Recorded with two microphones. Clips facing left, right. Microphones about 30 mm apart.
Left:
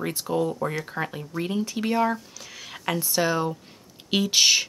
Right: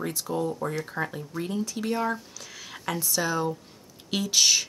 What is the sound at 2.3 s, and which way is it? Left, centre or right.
Speech, centre.